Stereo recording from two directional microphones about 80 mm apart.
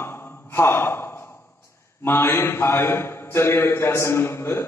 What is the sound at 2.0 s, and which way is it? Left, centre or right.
A man's voice, left.